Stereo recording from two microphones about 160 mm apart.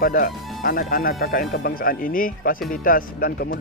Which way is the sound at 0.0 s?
60° left (ahead or behind).